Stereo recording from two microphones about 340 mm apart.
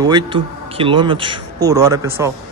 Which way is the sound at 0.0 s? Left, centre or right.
Centre.